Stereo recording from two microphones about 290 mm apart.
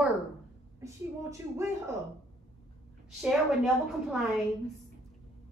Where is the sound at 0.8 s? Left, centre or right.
Centre.